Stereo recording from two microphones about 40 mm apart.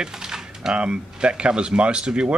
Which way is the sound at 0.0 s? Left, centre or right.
Centre.